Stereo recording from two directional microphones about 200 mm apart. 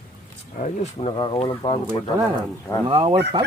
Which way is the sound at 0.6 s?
25° left (ahead or behind).